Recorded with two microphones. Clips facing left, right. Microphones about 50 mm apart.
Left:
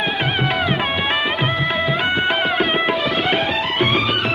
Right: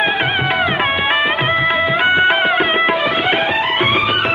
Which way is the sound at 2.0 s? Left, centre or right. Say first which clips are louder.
Right 9 dB; right.